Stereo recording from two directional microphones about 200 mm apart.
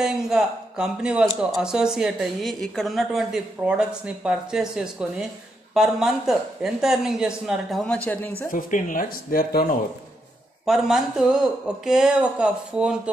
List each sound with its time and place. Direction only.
0.0 s a man's voice: centre (ahead or behind)
8.5 s speech: 40° left (ahead or behind)
10.6 s a woman's voice: centre (ahead or behind)